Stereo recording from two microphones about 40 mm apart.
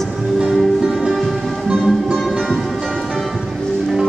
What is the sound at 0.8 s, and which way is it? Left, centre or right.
Music, centre.